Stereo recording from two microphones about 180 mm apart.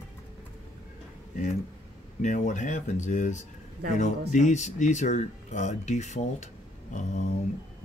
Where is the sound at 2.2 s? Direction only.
45° left (ahead or behind).